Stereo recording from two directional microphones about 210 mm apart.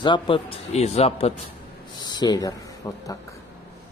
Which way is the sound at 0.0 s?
25° left (ahead or behind).